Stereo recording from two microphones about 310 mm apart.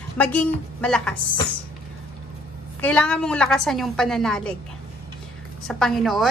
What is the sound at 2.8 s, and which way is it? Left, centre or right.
A woman's voice, centre.